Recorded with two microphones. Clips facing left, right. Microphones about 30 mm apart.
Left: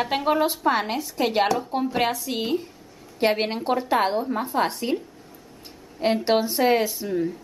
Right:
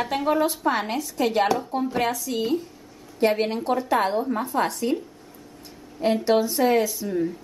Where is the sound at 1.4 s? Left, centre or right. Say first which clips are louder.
Even; centre.